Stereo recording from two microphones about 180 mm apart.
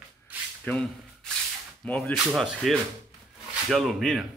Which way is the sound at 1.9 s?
5° left (ahead or behind).